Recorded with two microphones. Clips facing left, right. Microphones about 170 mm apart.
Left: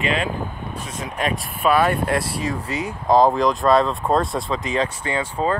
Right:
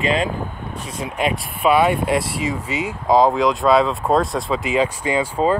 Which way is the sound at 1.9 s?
Centre (ahead or behind).